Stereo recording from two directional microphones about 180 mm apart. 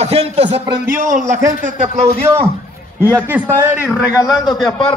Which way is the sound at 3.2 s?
15° right (ahead or behind).